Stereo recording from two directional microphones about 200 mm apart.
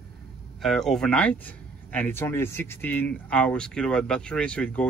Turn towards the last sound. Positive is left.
turn(degrees=5)  # may be behind; listen again after turning